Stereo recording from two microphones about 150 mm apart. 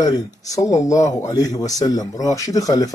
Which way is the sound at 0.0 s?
25° left (ahead or behind).